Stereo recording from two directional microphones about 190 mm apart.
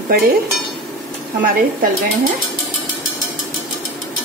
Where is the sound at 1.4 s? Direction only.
45° right (ahead or behind).